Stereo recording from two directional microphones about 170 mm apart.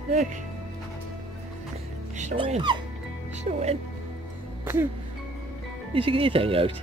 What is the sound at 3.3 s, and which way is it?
Speech, 40° right (ahead or behind).